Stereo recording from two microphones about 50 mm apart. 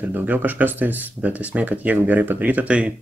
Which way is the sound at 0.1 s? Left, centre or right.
Right.